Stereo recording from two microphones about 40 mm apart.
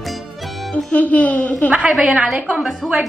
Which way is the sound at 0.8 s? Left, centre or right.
Left.